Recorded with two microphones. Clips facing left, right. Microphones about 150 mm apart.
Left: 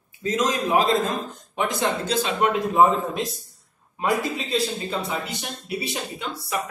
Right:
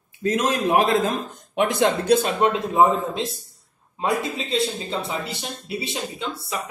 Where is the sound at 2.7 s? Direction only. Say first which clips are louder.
Even; 25° right (ahead or behind).